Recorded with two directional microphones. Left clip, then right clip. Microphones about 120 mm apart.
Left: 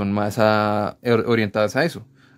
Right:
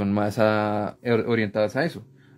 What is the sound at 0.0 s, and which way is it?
Speech, 25° left (ahead or behind).